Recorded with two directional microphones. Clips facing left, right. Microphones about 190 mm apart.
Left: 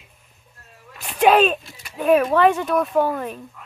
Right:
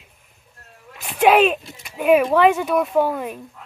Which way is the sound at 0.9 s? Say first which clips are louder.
Right 1 dB; 5° right (ahead or behind).